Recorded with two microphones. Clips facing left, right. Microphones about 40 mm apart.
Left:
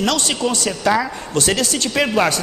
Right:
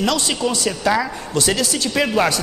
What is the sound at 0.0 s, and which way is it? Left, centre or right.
A man's voice, left.